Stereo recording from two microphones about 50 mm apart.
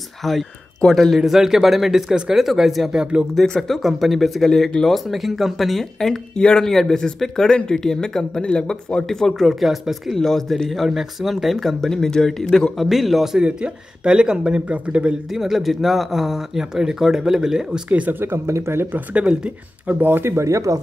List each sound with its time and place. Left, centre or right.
0.2 s speech: centre
3.4 s speech: centre
3.7 s speech: centre
6.3 s speech: centre
6.7 s speech: centre
12.7 s speech: centre
13.4 s speech: centre
15.3 s speech: centre
17.8 s speech: right
18.5 s speech: right
19.1 s speech: centre
19.9 s speech: right
20.2 s speech: right